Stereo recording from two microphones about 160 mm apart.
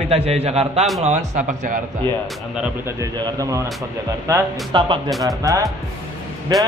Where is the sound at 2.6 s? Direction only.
15° right (ahead or behind).